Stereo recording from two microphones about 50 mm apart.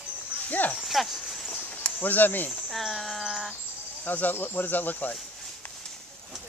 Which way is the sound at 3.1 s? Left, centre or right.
Centre.